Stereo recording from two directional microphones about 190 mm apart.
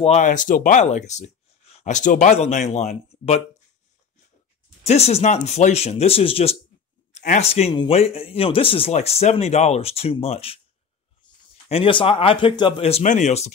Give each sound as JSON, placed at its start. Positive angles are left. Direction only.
{"t": 0.0, "sound": "speech", "side_deg": 40}
{"t": 4.8, "sound": "speech", "side_deg": 35}
{"t": 11.7, "sound": "speech", "side_deg": 30}